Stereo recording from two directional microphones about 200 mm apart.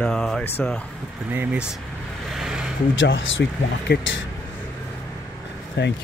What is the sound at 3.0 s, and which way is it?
Speech, 70° left (ahead or behind).